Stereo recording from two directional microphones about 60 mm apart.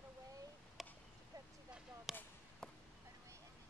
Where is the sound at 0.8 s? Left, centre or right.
Centre.